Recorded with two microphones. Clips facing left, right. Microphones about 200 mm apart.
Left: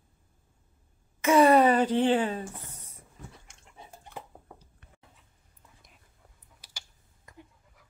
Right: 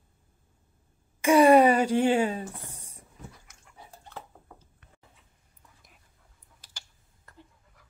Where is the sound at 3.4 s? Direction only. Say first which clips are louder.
Left 1 dB; 25° left (ahead or behind).